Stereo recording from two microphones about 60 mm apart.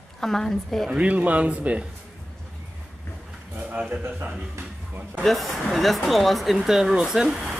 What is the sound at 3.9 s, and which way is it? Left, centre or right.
Speech, right.